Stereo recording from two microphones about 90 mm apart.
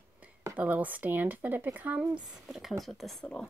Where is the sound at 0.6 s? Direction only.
20° right (ahead or behind).